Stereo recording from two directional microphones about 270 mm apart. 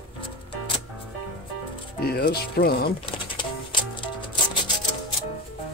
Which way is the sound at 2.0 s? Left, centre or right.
Left.